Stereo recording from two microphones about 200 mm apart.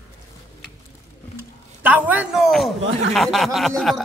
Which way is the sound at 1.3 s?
10° right (ahead or behind).